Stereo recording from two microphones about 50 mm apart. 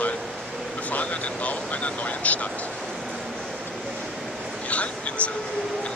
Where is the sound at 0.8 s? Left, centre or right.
Left.